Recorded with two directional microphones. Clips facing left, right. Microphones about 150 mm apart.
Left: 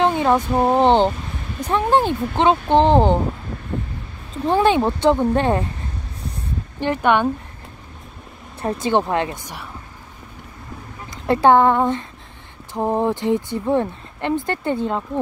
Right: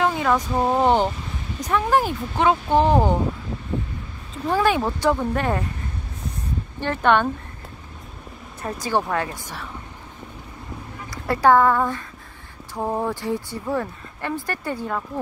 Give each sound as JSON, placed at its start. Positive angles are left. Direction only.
{"t": 0.0, "sound": "a sound", "side_deg": 25}
{"t": 1.6, "sound": "speech", "side_deg": 30}
{"t": 4.5, "sound": "speech", "side_deg": 25}
{"t": 6.8, "sound": "speech", "side_deg": 15}
{"t": 8.6, "sound": "speech", "side_deg": 25}
{"t": 11.1, "sound": "speech", "side_deg": 25}